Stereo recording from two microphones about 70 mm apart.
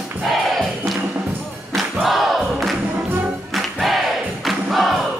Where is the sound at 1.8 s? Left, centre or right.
Centre.